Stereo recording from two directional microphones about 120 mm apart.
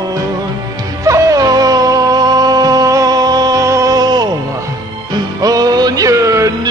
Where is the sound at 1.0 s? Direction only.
30° right (ahead or behind).